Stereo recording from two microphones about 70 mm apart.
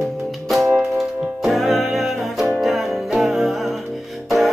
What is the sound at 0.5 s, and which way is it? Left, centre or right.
Music, centre.